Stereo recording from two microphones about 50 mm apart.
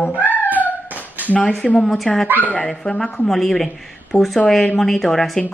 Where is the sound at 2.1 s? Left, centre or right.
Centre.